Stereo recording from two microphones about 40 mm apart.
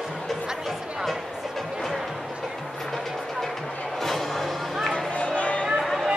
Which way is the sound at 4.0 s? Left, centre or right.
Centre.